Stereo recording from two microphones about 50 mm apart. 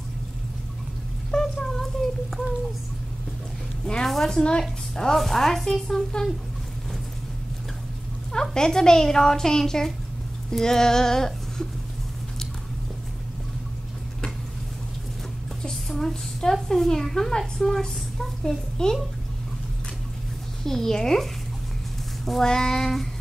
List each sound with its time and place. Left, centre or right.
1.3 s a sound: centre
3.8 s a woman's voice: centre
8.3 s a woman's voice: centre
15.7 s a sound: centre
16.6 s a woman's voice: centre
20.6 s a woman's voice: centre